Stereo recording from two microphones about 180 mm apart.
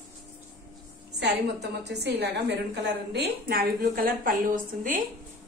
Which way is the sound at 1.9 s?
70° right (ahead or behind).